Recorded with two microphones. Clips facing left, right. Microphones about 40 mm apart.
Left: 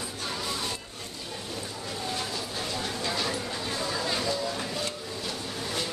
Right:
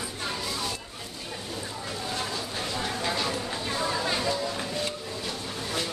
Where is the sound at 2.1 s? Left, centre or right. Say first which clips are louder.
Right 2 dB; right.